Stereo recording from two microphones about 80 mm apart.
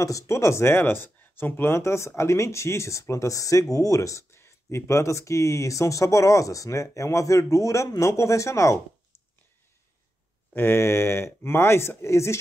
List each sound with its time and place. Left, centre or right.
0.0 s speech: left
10.5 s speech: left